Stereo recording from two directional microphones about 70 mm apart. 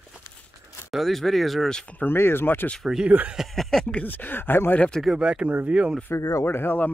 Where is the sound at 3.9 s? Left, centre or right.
Left.